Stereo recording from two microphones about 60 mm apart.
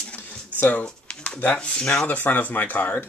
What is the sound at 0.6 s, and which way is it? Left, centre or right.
Speech, left.